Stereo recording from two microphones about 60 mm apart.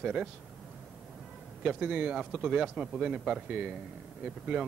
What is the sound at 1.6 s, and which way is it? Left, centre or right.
Speech, centre.